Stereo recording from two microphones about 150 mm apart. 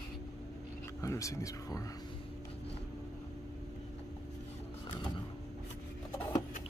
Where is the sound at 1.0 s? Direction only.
20° left (ahead or behind).